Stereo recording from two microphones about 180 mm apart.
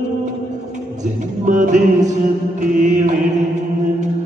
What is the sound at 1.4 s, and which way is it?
Music, 45° right (ahead or behind).